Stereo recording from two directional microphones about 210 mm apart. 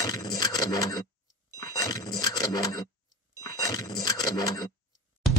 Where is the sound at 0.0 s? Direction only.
20° left (ahead or behind).